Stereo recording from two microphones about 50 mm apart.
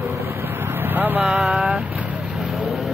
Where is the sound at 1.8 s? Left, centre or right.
Right.